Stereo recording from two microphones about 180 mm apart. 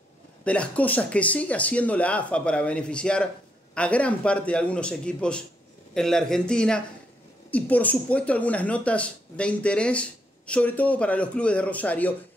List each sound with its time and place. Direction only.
0.4 s a man's voice: 5° left (ahead or behind)